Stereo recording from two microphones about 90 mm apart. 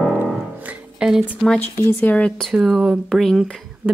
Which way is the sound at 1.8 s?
20° left (ahead or behind).